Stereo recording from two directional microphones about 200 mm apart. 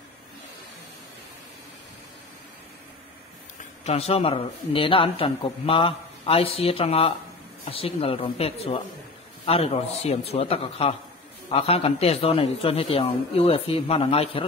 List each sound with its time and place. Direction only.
3.8 s speech: 30° left (ahead or behind)